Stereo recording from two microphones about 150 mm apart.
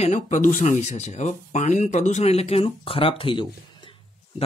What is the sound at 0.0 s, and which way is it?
Speech, 50° left (ahead or behind).